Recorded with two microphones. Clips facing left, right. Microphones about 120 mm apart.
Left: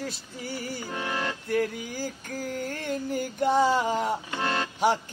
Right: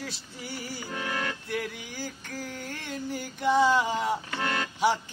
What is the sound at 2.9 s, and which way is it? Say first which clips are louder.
Music: left 4 dB; 45° left (ahead or behind).